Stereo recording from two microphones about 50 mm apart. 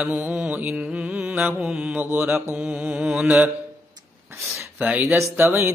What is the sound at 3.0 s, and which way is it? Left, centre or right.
Mantra, centre.